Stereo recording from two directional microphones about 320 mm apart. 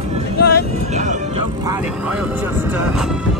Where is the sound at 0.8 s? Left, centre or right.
Right.